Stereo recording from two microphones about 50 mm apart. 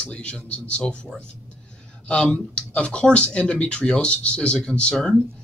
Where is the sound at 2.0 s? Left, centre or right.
Centre.